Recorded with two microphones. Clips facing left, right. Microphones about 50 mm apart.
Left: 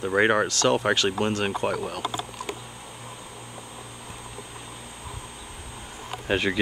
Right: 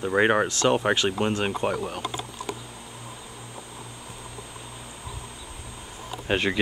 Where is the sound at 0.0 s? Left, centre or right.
Centre.